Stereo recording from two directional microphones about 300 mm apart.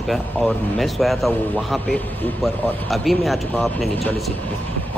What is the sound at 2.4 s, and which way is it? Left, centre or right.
Speech, centre.